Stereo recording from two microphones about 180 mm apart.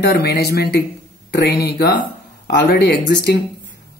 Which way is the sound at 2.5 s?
65° left (ahead or behind).